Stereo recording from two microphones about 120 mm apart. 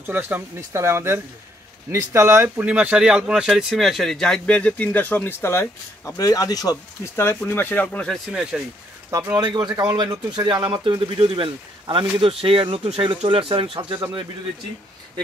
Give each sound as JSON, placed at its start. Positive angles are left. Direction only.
{"t": 0.0, "sound": "speech", "side_deg": -15}
{"t": 7.4, "sound": "speech", "side_deg": 15}
{"t": 8.3, "sound": "speech", "side_deg": -5}
{"t": 9.1, "sound": "speech", "side_deg": -35}